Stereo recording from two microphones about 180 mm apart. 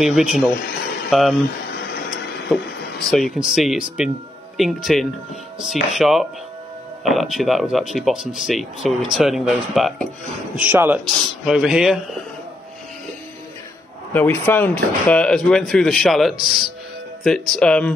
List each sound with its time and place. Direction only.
0.0 s speech: centre (ahead or behind)
0.5 s speech: 55° left (ahead or behind)
1.6 s a sound: 65° left (ahead or behind)
2.5 s speech: centre (ahead or behind)
4.9 s speech: centre (ahead or behind)
14.1 s speech: 10° left (ahead or behind)